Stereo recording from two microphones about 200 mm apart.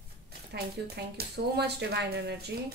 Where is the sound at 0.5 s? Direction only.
55° right (ahead or behind).